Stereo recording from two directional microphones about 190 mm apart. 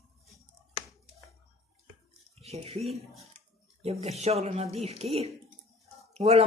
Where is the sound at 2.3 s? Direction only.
35° right (ahead or behind).